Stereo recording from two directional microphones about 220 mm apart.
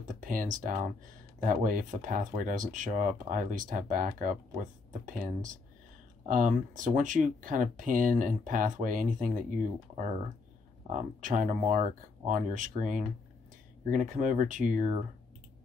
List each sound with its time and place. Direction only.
0.1 s speech: 40° right (ahead or behind)
10.9 s speech: 35° right (ahead or behind)